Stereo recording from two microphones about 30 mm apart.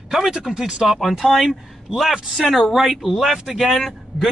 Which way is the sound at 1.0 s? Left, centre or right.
Centre.